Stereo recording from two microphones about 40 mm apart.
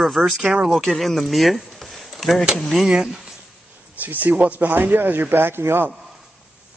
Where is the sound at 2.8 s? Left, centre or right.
Centre.